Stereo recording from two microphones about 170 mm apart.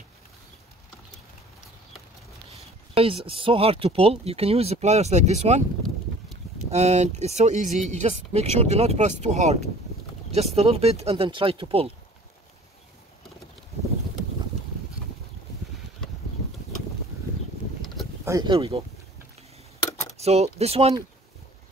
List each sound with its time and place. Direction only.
3.0 s speech: 35° right (ahead or behind)
6.7 s speech: 40° right (ahead or behind)
18.2 s speech: 20° right (ahead or behind)
20.2 s a sound: 40° right (ahead or behind)
20.5 s speech: 35° right (ahead or behind)